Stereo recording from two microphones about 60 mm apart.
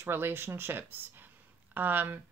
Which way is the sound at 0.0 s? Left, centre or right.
Right.